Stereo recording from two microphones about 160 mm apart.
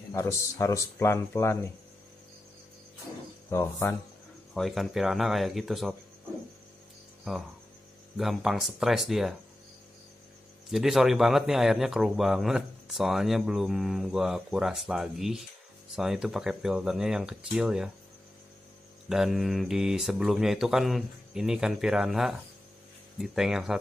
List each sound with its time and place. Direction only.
0.1 s speech: 20° left (ahead or behind)
3.4 s speech: 15° left (ahead or behind)
4.6 s speech: centre (ahead or behind)
8.2 s speech: centre (ahead or behind)
10.7 s speech: centre (ahead or behind)
19.0 s speech: centre (ahead or behind)